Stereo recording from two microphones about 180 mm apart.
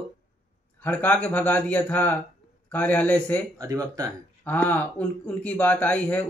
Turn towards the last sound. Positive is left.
turn(degrees=10)  # may be behind; listen again after turning